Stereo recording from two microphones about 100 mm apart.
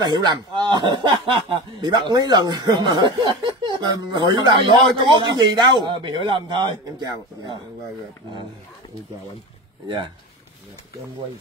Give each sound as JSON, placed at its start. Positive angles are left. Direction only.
{"t": 0.0, "sound": "speech", "side_deg": -45}
{"t": 9.8, "sound": "speech", "side_deg": -55}